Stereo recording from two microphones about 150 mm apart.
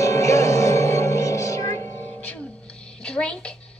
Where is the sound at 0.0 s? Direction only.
20° left (ahead or behind).